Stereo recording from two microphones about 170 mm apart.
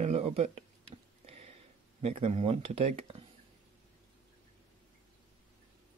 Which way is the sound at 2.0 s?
35° right (ahead or behind).